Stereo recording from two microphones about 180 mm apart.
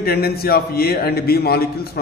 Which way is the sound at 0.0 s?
60° left (ahead or behind).